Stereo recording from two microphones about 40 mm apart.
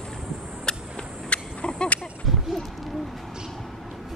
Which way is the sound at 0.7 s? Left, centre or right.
Left.